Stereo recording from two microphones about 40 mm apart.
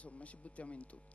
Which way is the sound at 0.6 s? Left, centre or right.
Left.